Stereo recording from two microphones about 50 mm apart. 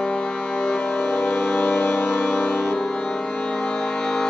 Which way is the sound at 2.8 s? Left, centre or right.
Centre.